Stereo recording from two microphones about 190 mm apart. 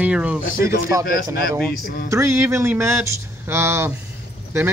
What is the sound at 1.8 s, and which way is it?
Speech, 50° left (ahead or behind).